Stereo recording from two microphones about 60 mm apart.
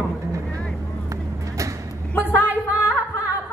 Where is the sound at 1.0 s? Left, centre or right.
Right.